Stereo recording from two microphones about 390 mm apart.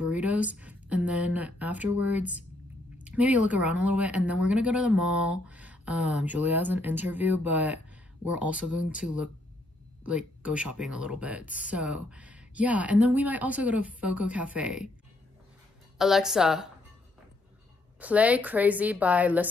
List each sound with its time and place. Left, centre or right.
0.0 s speech: centre
16.0 s speech: centre
18.0 s speech: centre